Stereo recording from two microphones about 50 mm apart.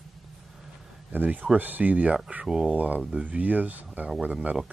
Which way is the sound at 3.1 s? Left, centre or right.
Right.